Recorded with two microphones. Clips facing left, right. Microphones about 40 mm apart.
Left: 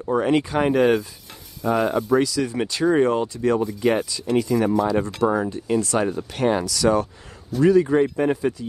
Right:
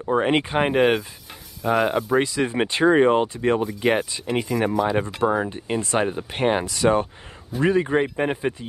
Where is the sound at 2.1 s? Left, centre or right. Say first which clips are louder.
Left 1 dB; right.